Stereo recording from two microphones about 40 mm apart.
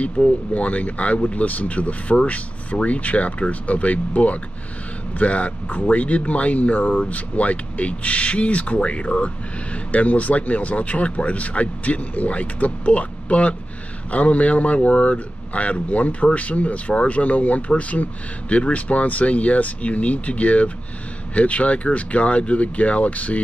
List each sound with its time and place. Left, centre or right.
0.0 s speech: left
9.9 s speech: left